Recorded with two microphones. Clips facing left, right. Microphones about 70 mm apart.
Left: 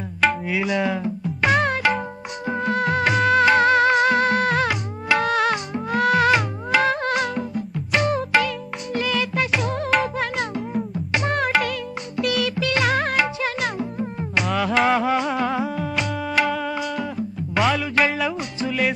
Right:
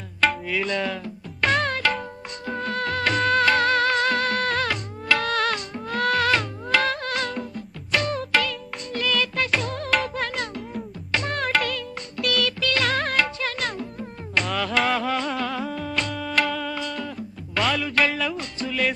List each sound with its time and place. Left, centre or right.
0.5 s music: centre
10.3 s music: centre